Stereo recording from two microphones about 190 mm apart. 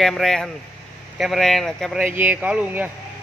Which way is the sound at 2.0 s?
10° right (ahead or behind).